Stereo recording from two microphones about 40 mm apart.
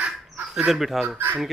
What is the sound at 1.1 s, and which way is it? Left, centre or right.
Speech, right.